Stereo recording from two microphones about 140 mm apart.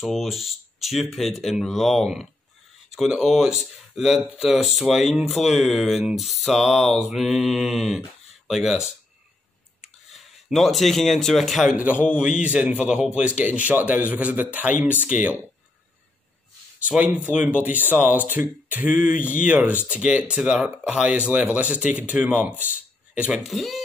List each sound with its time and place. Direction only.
0.0 s speech: centre (ahead or behind)
16.8 s speech: 10° right (ahead or behind)
18.9 s speech: 75° left (ahead or behind)
19.3 s speech: 10° right (ahead or behind)
22.7 s a sound: 10° right (ahead or behind)
23.5 s speech: centre (ahead or behind)